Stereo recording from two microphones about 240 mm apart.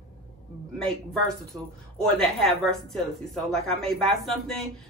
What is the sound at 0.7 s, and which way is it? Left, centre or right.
Speech, centre.